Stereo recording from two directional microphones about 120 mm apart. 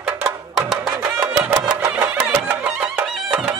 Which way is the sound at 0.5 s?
Centre (ahead or behind).